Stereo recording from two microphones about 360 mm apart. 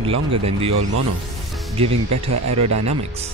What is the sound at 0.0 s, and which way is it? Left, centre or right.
Speech, centre.